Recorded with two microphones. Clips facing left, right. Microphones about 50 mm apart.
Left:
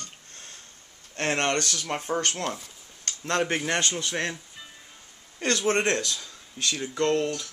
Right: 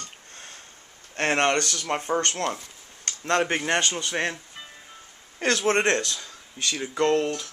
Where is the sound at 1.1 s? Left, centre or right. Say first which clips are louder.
Right 3 dB; right.